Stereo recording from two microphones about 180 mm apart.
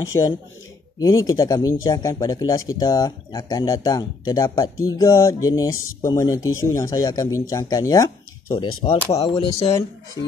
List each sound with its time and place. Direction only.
0.1 s speech: 15° left (ahead or behind); by 9.8 s 30° left (ahead or behind)